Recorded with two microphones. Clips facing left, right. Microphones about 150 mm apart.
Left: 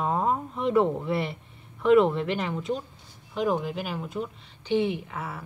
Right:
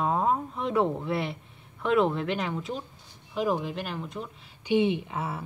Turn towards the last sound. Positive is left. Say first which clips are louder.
# right 2 dB
turn(degrees=-25)  # may be behind; listen again after turning